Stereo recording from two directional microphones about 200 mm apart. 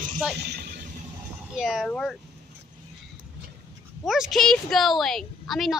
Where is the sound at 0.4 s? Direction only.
55° right (ahead or behind).